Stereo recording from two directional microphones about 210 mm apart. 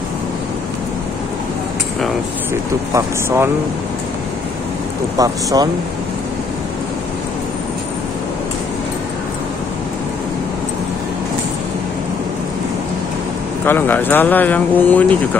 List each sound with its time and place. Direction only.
2.9 s speech: 10° right (ahead or behind)
5.1 s speech: 15° right (ahead or behind)
13.7 s speech: 10° left (ahead or behind)